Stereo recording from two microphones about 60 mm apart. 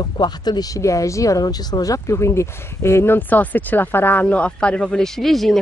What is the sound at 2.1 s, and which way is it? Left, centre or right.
Speech, left.